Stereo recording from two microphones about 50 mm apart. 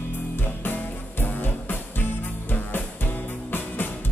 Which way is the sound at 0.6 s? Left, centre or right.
Left.